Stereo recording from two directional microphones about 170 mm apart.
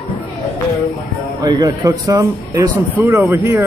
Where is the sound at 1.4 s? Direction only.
25° right (ahead or behind).